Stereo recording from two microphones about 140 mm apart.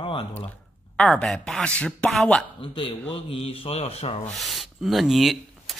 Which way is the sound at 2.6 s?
40° left (ahead or behind).